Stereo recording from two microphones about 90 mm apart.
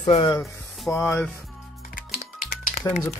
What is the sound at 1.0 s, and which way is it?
Music, 25° left (ahead or behind).